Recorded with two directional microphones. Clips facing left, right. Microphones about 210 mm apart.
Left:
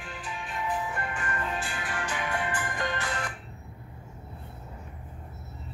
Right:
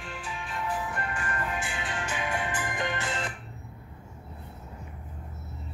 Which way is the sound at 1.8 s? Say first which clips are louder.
Even; 20° right (ahead or behind).